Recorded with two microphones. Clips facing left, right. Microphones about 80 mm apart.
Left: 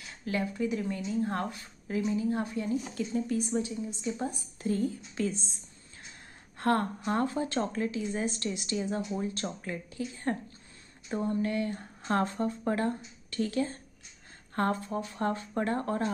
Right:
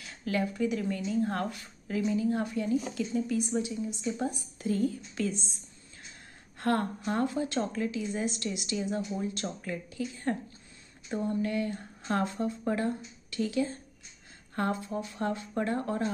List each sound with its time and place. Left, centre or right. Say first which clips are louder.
0.2 s speech: right 2 dB; left
6.6 s speech: left 1 dB; left